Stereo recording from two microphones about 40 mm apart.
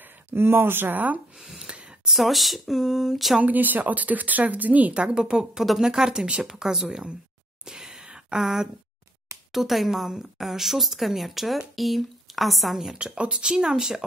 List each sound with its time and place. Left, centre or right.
0.3 s speech: right
0.9 s speech: right
1.5 s gasp: centre
2.0 s speech: centre
3.4 s speech: right
4.9 s speech: centre
6.5 s speech: centre
7.6 s a sound: centre
9.5 s speech: centre
12.9 s speech: right